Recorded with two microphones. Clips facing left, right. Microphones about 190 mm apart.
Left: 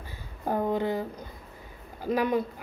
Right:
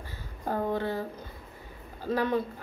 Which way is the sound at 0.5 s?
15° left (ahead or behind).